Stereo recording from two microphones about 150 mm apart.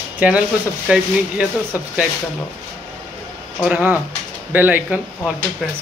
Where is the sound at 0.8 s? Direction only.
5° right (ahead or behind).